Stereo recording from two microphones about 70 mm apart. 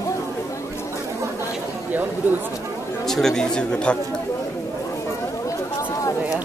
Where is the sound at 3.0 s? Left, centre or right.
Centre.